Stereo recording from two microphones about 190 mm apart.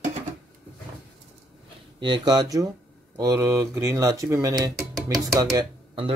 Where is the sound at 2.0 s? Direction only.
25° right (ahead or behind).